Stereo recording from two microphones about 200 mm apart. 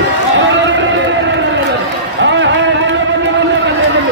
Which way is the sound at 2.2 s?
65° right (ahead or behind).